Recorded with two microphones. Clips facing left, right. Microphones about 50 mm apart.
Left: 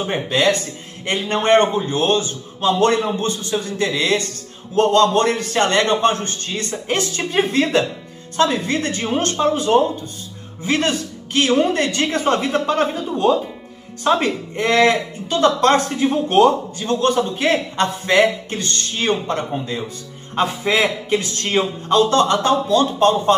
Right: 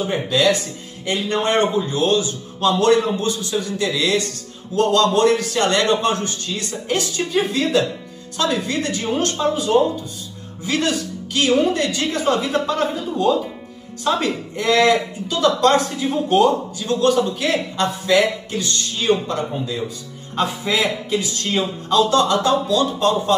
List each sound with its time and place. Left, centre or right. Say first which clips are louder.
0.0 s speech: even; left